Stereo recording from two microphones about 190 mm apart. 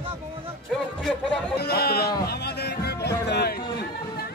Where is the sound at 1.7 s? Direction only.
55° left (ahead or behind).